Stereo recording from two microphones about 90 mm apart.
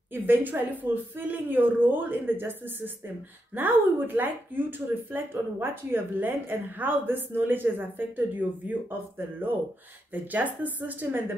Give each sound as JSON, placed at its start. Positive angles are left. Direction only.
{"t": 0.1, "sound": "speech", "side_deg": -20}
{"t": 10.1, "sound": "speech", "side_deg": -20}